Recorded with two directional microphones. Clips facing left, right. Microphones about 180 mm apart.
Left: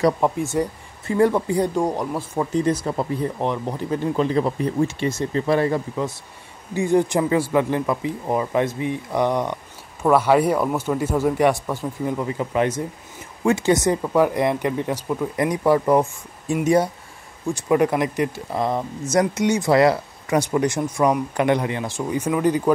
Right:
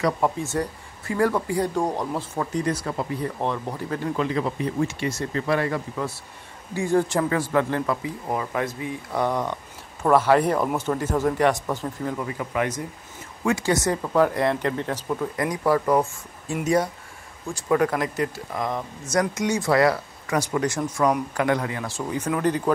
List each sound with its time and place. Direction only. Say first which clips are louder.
0.2 s speech: left 3 dB; 15° left (ahead or behind)
2.5 s speech: left 5 dB; 25° left (ahead or behind)
18.5 s speech: left 5 dB; 30° left (ahead or behind); by 22.6 s 10° left (ahead or behind)